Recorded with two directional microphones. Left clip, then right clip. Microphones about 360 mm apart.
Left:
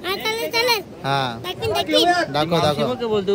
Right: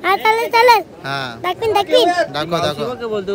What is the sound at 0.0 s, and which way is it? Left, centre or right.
Speech, centre.